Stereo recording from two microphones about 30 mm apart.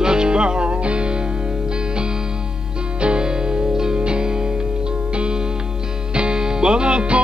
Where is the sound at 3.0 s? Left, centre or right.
Right.